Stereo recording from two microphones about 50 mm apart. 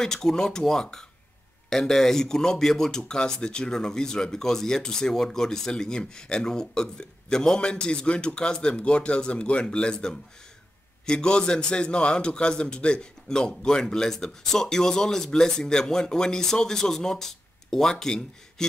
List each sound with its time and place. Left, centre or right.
0.0 s a man's voice: centre